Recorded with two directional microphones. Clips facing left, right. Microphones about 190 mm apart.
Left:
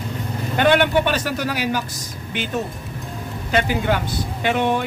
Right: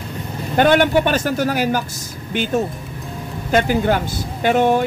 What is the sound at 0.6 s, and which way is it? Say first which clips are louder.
Speech: right 3 dB; 45° right (ahead or behind).